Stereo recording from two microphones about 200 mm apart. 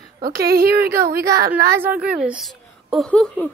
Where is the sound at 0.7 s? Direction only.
10° right (ahead or behind); by 3.5 s 5° left (ahead or behind).